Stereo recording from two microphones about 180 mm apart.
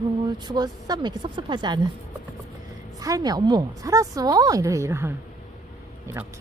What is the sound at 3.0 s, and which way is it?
A woman's voice, 20° right (ahead or behind).